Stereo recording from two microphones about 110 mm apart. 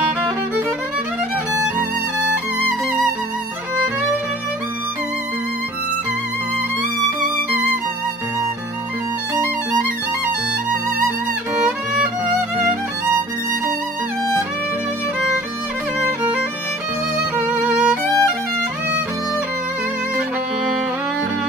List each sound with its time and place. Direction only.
1.5 s music: 25° right (ahead or behind)
12.5 s music: 25° right (ahead or behind)
17.5 s violin: 10° right (ahead or behind)
18.0 s music: 25° left (ahead or behind)